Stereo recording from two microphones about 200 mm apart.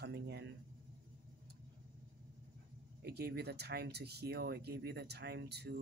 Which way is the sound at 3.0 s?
55° right (ahead or behind).